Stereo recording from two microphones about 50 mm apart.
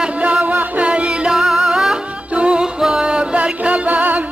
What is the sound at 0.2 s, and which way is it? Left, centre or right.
Music, right.